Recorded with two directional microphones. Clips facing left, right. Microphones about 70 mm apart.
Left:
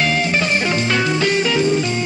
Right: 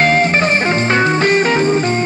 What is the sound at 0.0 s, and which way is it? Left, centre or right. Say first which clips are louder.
Music: right 5 dB; right.